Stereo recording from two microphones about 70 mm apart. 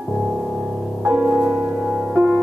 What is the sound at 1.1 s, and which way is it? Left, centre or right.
Music, centre.